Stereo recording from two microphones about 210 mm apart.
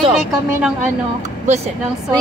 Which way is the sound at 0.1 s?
5° right (ahead or behind).